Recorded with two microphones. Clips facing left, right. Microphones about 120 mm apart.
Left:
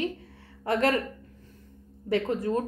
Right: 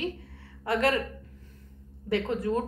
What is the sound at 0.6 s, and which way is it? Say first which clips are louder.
Speech: left 1 dB; 40° left (ahead or behind).